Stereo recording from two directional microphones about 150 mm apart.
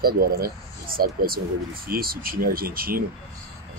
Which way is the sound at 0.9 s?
75° right (ahead or behind).